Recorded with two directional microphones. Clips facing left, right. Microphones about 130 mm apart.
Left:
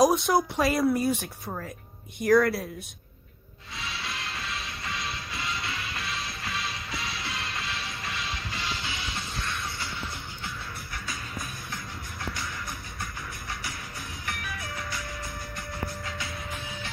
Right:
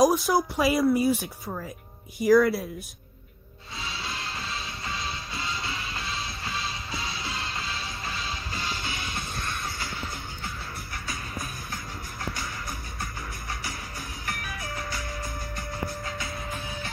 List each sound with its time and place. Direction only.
0.0 s speech: centre (ahead or behind)
3.8 s music: 30° right (ahead or behind); by 10.0 s 45° right (ahead or behind)
14.2 s music: 45° right (ahead or behind)